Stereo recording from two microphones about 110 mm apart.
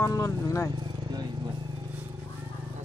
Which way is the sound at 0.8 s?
40° right (ahead or behind).